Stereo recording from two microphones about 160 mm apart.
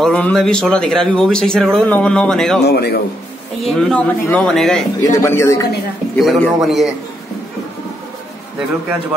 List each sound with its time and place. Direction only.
0.0 s a man's voice: 5° left (ahead or behind)
2.6 s a man's voice: 80° left
3.6 s a man's voice: 5° left (ahead or behind)
5.0 s speech: 15° left (ahead or behind)
6.1 s a man's voice: centre (ahead or behind)